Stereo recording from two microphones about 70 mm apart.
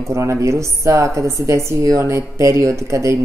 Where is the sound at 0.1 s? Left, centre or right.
Right.